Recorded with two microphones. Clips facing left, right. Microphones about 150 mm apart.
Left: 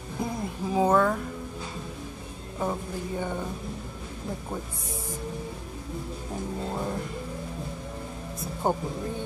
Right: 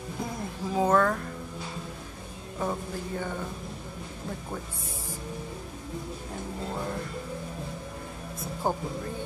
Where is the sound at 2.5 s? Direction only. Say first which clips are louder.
Left 1 dB; 10° left (ahead or behind).